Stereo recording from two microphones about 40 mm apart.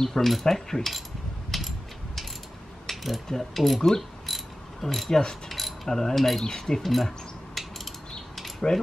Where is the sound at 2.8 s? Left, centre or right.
Centre.